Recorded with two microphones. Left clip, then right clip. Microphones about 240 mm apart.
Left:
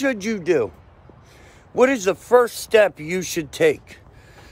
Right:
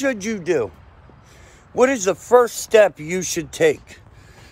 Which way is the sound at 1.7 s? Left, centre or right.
Centre.